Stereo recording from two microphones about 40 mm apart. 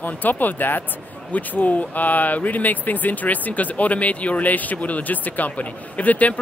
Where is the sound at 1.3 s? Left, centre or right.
Left.